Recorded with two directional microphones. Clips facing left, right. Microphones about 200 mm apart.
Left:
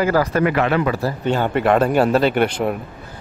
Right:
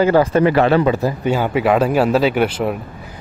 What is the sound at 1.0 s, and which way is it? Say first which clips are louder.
Speech: right 2 dB; 15° right (ahead or behind).